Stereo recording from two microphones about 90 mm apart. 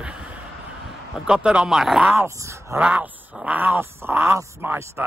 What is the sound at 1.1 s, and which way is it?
Speech, 10° right (ahead or behind).